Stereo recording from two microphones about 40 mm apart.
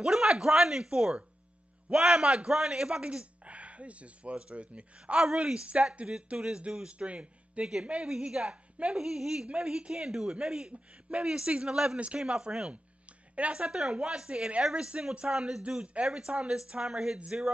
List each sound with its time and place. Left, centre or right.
0.0 s a man's voice: centre
5.2 s a man's voice: right
8.1 s a woman's voice: right
9.0 s a man's voice: centre
10.7 s a man's voice: right
13.3 s a man's voice: right; by 15.6 s centre
15.7 s a man's voice: right; by 17.2 s centre